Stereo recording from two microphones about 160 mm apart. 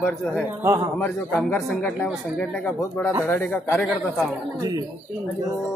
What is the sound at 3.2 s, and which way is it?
Speech, 10° left (ahead or behind).